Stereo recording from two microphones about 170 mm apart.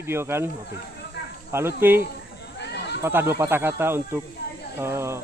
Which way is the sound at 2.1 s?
80° left.